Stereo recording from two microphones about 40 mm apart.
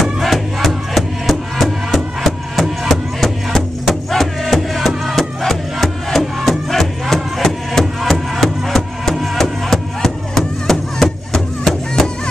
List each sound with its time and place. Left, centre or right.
0.0 s music: centre